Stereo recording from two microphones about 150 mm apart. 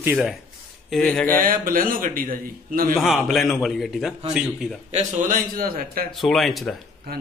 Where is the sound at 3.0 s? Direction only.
Centre (ahead or behind).